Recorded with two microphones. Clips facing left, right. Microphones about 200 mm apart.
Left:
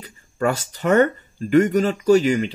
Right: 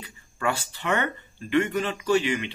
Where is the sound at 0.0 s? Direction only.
40° left (ahead or behind).